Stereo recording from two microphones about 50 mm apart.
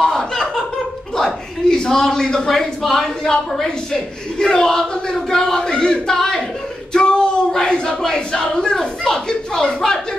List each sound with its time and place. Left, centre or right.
0.0 s chuckle: centre
1.1 s a man's voice: centre